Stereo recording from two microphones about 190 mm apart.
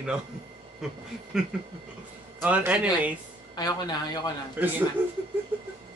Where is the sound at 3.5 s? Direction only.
20° left (ahead or behind).